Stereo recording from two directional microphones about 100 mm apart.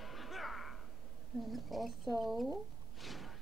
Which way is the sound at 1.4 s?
Centre (ahead or behind).